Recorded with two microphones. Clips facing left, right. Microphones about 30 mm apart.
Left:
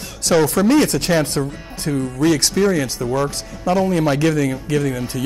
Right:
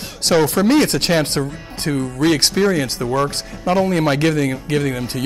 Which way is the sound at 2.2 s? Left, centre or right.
Right.